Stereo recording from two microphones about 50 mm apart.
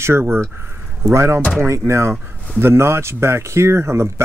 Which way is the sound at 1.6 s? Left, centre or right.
Right.